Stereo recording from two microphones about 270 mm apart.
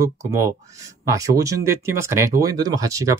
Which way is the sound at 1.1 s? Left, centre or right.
Centre.